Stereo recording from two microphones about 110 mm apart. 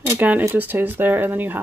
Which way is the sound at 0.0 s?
15° right (ahead or behind).